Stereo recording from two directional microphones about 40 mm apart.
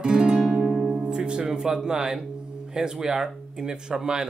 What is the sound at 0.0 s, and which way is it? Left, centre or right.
Music, centre.